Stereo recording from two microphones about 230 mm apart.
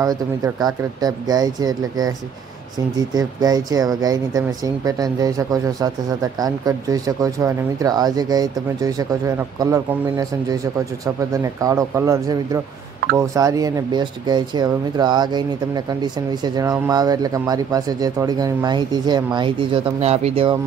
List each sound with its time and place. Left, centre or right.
0.0 s speech: centre
3.2 s speech: centre